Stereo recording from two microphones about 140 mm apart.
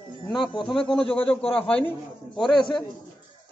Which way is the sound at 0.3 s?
35° left (ahead or behind).